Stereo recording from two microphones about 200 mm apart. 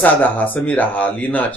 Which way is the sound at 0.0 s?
10° left (ahead or behind).